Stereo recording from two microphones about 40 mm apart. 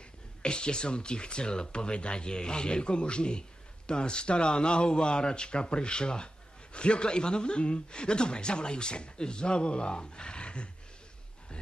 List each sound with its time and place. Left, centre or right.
0.4 s speech: left